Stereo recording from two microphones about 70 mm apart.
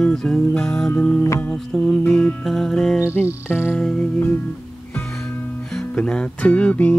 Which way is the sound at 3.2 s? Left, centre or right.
Centre.